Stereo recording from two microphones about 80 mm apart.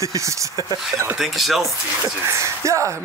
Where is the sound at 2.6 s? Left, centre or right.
Right.